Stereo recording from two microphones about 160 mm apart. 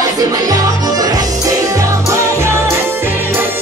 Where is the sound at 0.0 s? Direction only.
25° right (ahead or behind).